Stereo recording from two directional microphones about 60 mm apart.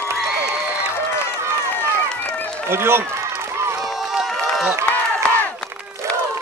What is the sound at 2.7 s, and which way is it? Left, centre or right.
Speech, right.